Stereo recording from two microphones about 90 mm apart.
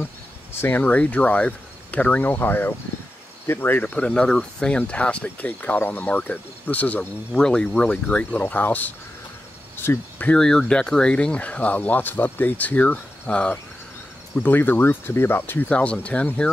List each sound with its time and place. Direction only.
0.6 s speech: 20° left (ahead or behind)
9.8 s cricket: 20° left (ahead or behind)
10.3 s speech: 5° left (ahead or behind)